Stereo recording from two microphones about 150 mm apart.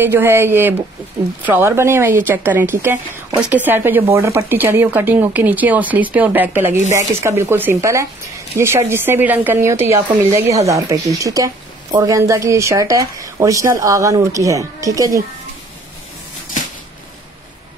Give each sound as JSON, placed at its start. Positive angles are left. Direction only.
{"t": 0.0, "sound": "a woman's voice", "side_deg": -15}